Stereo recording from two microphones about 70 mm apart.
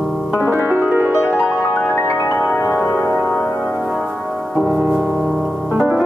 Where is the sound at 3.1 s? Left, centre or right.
Centre.